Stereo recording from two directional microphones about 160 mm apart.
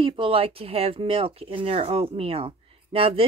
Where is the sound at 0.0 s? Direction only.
35° right (ahead or behind).